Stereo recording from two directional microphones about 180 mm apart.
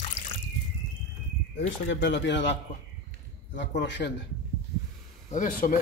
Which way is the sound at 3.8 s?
75° left (ahead or behind).